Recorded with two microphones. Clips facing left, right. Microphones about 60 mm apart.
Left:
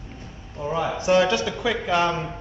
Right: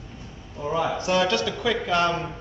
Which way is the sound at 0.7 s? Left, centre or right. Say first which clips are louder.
Left 2 dB; centre.